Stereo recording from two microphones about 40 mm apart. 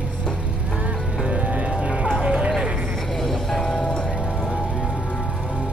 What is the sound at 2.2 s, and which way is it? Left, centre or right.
Music, right.